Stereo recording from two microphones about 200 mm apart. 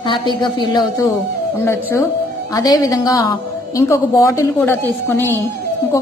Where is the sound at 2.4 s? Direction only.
20° left (ahead or behind).